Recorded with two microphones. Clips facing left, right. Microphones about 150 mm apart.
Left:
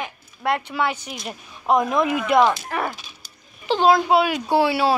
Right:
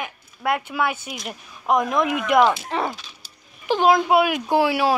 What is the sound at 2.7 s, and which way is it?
Speech, 20° right (ahead or behind).